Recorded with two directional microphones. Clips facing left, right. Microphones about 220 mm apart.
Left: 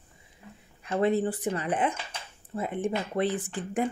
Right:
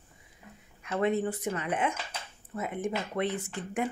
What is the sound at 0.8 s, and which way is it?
Speech, 35° left (ahead or behind).